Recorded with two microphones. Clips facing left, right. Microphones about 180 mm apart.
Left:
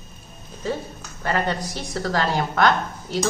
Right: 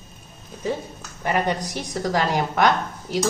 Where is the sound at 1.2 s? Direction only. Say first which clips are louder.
Right 1 dB; 15° right (ahead or behind).